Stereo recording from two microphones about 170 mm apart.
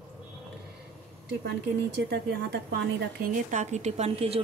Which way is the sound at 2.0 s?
85° right.